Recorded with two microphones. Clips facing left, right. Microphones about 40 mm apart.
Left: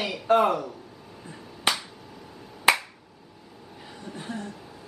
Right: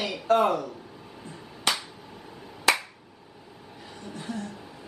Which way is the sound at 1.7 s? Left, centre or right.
Centre.